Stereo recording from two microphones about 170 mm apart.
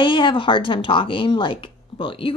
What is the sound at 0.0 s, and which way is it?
A woman's voice, 30° left (ahead or behind).